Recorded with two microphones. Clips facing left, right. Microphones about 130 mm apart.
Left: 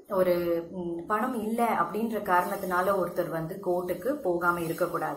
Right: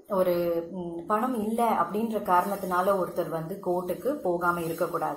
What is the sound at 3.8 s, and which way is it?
A woman's voice, 15° right (ahead or behind).